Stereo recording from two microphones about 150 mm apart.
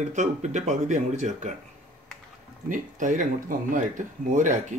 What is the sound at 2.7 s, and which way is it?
Speech, 60° right (ahead or behind).